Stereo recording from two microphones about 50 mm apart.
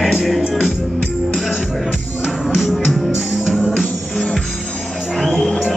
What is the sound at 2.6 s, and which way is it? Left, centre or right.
Music, centre.